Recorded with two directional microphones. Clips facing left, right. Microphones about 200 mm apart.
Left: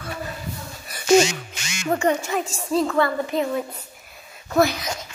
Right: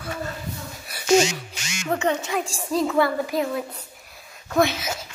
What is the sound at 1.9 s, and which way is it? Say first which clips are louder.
A woman's voice: left 2 dB; 10° left (ahead or behind).